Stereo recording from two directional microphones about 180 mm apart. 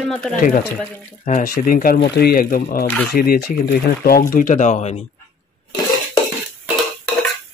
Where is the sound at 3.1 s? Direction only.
55° left (ahead or behind); by 5.0 s 35° left (ahead or behind).